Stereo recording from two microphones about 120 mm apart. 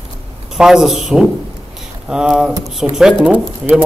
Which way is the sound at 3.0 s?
5° right (ahead or behind).